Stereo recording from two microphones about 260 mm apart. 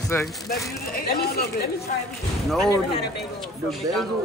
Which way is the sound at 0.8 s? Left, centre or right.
Left.